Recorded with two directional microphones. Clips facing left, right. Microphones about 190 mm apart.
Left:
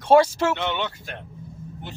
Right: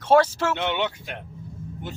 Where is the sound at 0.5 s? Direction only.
15° right (ahead or behind).